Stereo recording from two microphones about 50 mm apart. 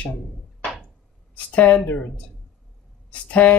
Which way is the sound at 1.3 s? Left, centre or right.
Left.